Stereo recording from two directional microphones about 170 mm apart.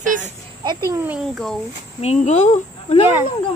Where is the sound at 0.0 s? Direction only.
50° right (ahead or behind).